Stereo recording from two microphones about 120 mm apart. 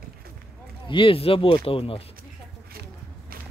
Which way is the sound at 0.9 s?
45° left (ahead or behind).